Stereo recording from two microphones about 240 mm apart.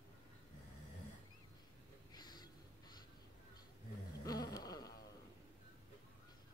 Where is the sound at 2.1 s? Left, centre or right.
Centre.